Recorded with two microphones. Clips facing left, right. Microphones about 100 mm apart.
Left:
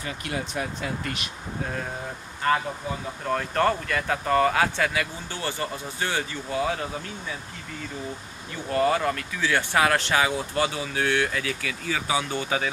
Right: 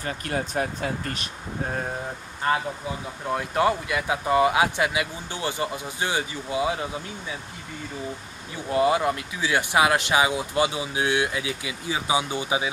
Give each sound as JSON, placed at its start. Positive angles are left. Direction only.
{"t": 0.0, "sound": "speech", "side_deg": -40}
{"t": 2.4, "sound": "speech", "side_deg": -20}
{"t": 3.3, "sound": "speech", "side_deg": -10}
{"t": 8.6, "sound": "speech", "side_deg": -15}